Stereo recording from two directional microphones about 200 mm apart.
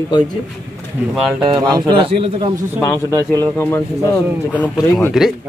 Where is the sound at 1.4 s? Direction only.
20° right (ahead or behind).